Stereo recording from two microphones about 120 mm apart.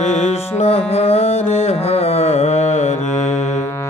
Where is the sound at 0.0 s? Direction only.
65° left (ahead or behind).